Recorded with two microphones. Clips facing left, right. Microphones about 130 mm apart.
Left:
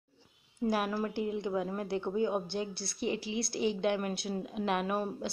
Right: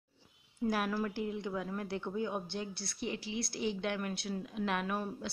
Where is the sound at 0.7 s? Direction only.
10° left (ahead or behind).